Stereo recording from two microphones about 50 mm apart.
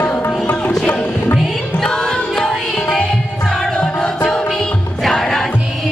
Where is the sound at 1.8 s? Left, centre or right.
Centre.